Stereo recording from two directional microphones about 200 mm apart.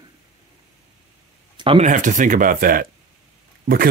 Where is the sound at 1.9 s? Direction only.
40° right (ahead or behind).